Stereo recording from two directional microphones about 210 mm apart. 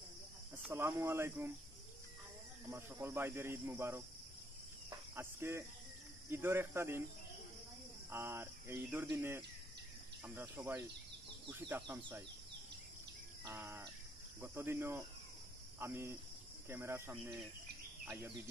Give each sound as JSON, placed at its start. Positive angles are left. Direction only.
{"t": 0.6, "sound": "speech", "side_deg": -10}
{"t": 2.7, "sound": "speech", "side_deg": -10}
{"t": 4.8, "sound": "cricket", "side_deg": -10}
{"t": 6.3, "sound": "speech", "side_deg": -10}
{"t": 8.1, "sound": "speech", "side_deg": -10}
{"t": 13.4, "sound": "speech", "side_deg": -10}